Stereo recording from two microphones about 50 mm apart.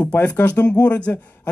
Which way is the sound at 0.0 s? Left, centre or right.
Left.